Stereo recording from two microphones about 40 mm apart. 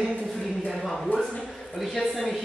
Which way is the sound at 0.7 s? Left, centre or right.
Centre.